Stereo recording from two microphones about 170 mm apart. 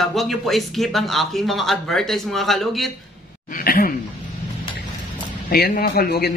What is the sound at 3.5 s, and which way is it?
Speech, 55° left (ahead or behind).